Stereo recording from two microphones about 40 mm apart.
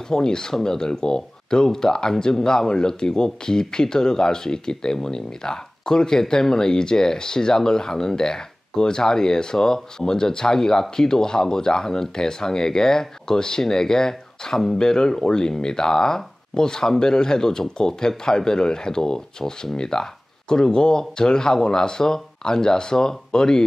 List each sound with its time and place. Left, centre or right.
0.1 s speech: centre